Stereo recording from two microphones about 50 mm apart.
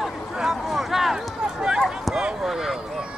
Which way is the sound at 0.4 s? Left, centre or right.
Centre.